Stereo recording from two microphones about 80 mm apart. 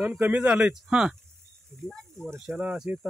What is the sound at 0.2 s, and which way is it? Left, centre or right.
Speech, centre.